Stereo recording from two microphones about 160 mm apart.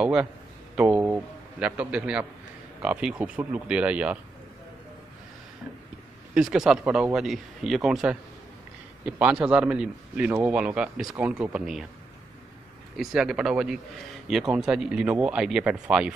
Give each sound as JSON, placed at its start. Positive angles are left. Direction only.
{"t": 0.0, "sound": "a man's voice", "side_deg": -5}
{"t": 6.3, "sound": "a man's voice", "side_deg": -5}
{"t": 12.9, "sound": "speech", "side_deg": -5}